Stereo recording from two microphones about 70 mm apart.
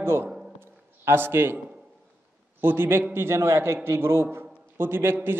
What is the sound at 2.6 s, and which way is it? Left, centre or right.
A man's voice, right.